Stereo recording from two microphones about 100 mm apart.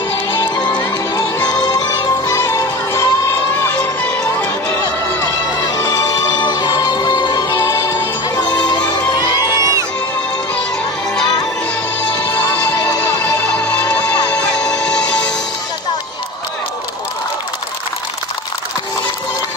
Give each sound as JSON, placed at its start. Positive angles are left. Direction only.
{"t": 0.7, "sound": "music", "side_deg": 40}
{"t": 5.2, "sound": "music", "side_deg": 35}
{"t": 7.5, "sound": "music", "side_deg": 30}
{"t": 9.1, "sound": "music", "side_deg": 40}
{"t": 9.6, "sound": "music", "side_deg": -30}
{"t": 12.4, "sound": "music", "side_deg": 20}
{"t": 12.7, "sound": "music", "side_deg": 35}
{"t": 13.4, "sound": "music", "side_deg": 15}